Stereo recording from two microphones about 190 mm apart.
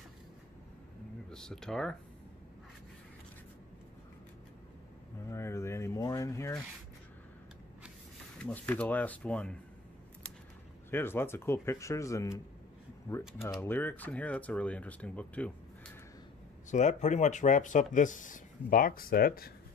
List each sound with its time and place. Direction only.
1.3 s speech: 5° left (ahead or behind)
5.3 s speech: 15° left (ahead or behind)
8.4 s speech: 5° left (ahead or behind)
10.9 s speech: 10° left (ahead or behind)
13.4 s speech: 10° left (ahead or behind)
16.7 s speech: 40° left (ahead or behind)